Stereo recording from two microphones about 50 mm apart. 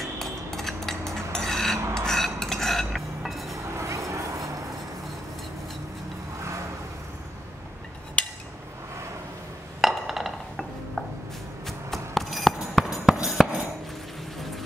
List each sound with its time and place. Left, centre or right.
0.0 s cutlery: centre
1.8 s filing: right
2.0 s cutlery: centre
3.7 s vehicle: right
9.8 s a sound: centre
11.6 s a sound: centre
12.5 s hammer: centre